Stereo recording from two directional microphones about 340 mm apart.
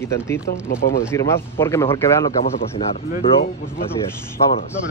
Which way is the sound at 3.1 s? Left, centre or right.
Left.